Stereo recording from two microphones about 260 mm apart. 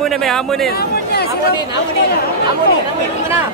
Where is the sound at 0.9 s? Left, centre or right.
Left.